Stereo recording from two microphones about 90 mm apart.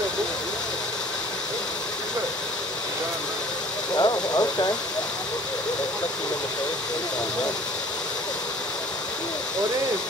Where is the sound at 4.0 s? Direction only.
45° left (ahead or behind).